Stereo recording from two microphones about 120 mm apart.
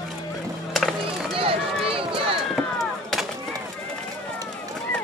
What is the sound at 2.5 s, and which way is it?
Chop, centre (ahead or behind).